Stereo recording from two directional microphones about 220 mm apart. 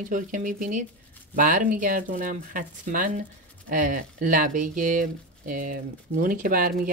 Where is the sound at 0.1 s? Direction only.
35° right (ahead or behind).